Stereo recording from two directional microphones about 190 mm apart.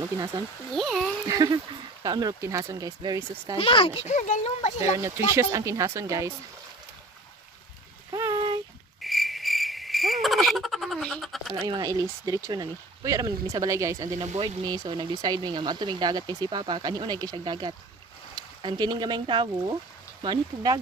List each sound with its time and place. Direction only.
0.7 s speech: centre (ahead or behind)
1.3 s speech: 20° right (ahead or behind)
3.5 s speech: 30° left (ahead or behind)
4.1 s speech: 40° left (ahead or behind)
4.9 s speech: 15° right (ahead or behind)
8.1 s a sound: 20° right (ahead or behind)
9.0 s cricket: centre (ahead or behind)
11.6 s speech: 20° right (ahead or behind)
14.2 s speech: 30° right (ahead or behind)